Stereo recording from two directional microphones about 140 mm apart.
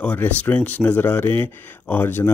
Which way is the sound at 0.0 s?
10° left (ahead or behind).